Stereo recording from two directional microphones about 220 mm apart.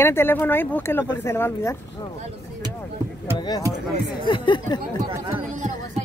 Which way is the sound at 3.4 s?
20° left (ahead or behind).